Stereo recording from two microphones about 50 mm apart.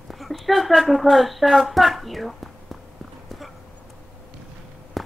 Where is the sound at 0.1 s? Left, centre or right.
Centre.